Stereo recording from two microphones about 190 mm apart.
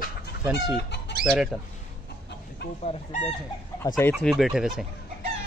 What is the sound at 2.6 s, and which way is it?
Chicken, 60° left (ahead or behind).